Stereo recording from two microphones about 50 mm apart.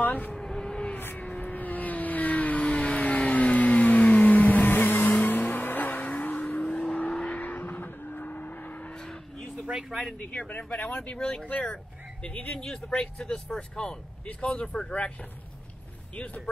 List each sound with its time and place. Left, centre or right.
0.0 s a sound: left
0.4 s vehicle: centre
1.4 s vehicle: left
9.7 s a sound: centre
10.8 s speech: centre
11.4 s speech: left